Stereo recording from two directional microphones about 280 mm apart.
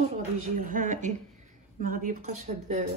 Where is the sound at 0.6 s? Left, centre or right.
Right.